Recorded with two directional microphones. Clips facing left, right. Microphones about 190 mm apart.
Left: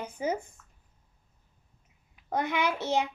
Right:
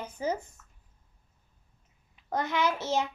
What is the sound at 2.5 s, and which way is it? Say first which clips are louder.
Speech: right 1 dB; 15° left (ahead or behind).